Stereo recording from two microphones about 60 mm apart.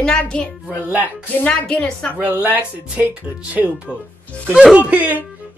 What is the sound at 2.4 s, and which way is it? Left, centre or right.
Speech, right.